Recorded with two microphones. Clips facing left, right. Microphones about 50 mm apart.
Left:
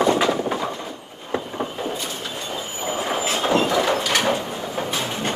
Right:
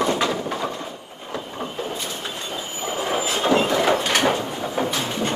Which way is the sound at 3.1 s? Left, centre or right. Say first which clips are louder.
Right 1 dB; centre.